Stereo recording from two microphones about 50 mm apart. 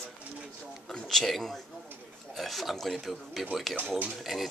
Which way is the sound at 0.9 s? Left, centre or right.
Centre.